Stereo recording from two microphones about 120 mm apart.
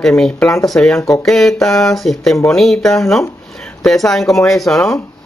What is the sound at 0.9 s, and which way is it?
Speech, 25° left (ahead or behind).